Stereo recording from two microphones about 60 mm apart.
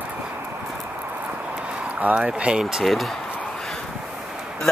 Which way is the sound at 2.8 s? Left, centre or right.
Centre.